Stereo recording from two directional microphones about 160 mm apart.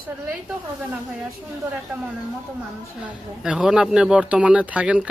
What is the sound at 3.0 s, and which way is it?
Speech, 10° right (ahead or behind).